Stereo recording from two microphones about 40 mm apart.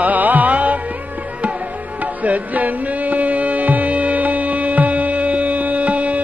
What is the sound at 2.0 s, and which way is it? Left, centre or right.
Music, right.